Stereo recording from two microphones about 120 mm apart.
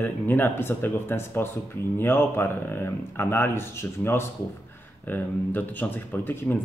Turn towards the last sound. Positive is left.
turn(degrees=15)  # may be behind; listen again after turning